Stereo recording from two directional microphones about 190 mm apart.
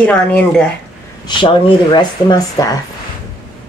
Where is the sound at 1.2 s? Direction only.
25° left (ahead or behind).